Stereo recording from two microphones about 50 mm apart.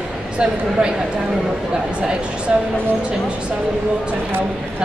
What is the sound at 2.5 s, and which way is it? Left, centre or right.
Speech, centre.